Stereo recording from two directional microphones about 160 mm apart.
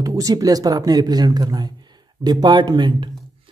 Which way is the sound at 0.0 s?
20° right (ahead or behind).